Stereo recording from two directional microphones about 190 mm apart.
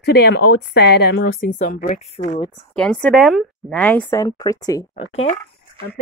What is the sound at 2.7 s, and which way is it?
Speech, 5° left (ahead or behind).